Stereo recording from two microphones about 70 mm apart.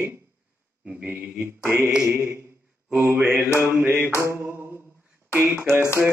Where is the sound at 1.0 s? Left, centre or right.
Right.